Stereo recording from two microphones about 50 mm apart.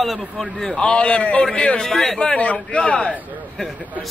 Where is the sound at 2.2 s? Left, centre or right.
Left.